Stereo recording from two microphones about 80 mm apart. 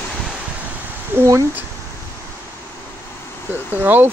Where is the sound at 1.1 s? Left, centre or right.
Right.